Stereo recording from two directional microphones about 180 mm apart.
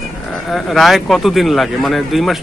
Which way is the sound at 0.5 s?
Centre (ahead or behind).